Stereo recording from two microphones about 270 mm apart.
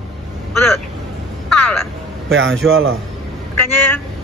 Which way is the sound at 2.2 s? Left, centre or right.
Right.